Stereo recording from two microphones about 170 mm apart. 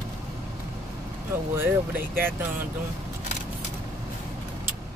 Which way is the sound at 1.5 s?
10° right (ahead or behind).